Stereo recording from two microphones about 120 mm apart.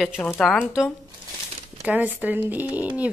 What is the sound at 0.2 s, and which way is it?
Speech, 15° left (ahead or behind).